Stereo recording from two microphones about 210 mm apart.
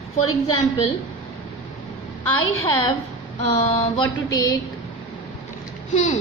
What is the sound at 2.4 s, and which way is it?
Speech, 75° left (ahead or behind).